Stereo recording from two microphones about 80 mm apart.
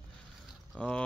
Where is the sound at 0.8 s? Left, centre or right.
Centre.